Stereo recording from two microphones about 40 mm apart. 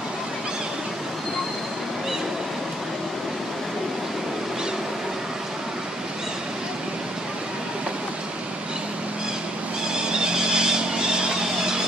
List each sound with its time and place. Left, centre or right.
9.9 s vehicle: centre